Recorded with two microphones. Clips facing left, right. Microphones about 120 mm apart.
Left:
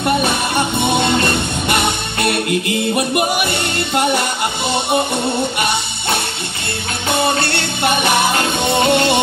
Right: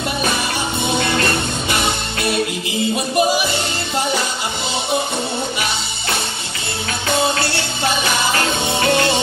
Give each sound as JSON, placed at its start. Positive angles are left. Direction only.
{"t": 0.9, "sound": "music", "side_deg": 20}
{"t": 1.7, "sound": "music", "side_deg": 60}
{"t": 7.1, "sound": "music", "side_deg": 60}
{"t": 8.8, "sound": "music", "side_deg": 20}